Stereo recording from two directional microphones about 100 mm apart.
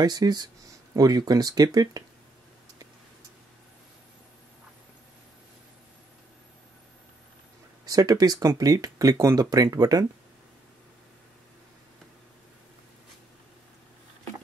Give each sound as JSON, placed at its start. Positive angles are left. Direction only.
{"t": 0.0, "sound": "speech", "side_deg": -45}
{"t": 7.8, "sound": "speech", "side_deg": -40}